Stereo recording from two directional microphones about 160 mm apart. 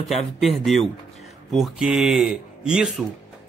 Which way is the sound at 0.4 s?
Centre (ahead or behind).